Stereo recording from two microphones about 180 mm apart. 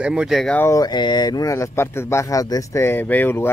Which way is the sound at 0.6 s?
20° left (ahead or behind).